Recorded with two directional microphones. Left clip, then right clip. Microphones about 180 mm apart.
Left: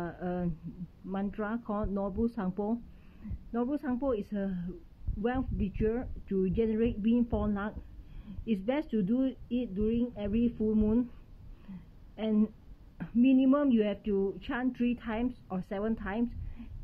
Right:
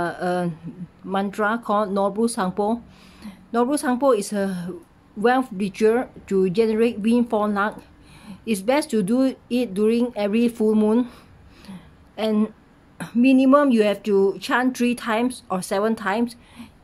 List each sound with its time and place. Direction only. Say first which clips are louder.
0.0 s speech: right 13 dB; 15° right (ahead or behind)
12.2 s speech: right 9 dB; 15° right (ahead or behind)